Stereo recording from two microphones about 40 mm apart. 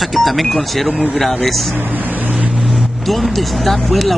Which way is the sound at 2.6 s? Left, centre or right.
Centre.